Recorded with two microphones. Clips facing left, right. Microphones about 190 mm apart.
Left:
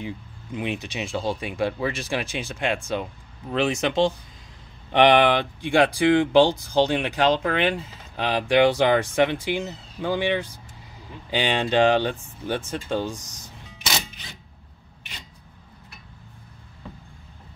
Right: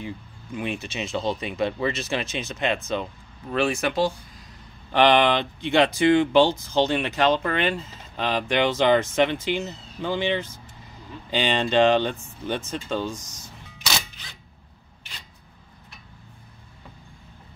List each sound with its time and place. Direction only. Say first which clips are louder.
0.0 s speech: left 1 dB; 20° left (ahead or behind)